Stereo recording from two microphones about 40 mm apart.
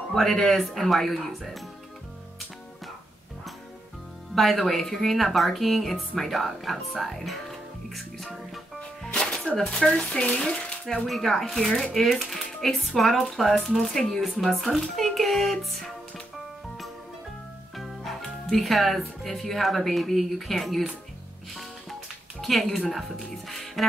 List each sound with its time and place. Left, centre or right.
0.1 s speech: centre
4.4 s speech: centre
7.9 s music: centre
9.0 s music: centre
9.5 s speech: left
11.1 s speech: centre
17.7 s speech: centre
22.4 s speech: centre
23.3 s music: centre